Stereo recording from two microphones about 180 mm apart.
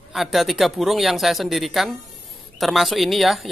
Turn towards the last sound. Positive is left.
turn(degrees=0)  # may be behind; listen again after turning